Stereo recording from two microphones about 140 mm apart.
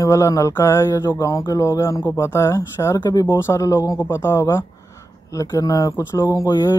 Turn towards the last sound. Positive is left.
turn(degrees=25)  # may be behind; listen again after turning